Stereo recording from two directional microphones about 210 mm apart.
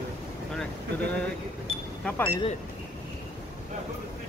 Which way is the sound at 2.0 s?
10° left (ahead or behind).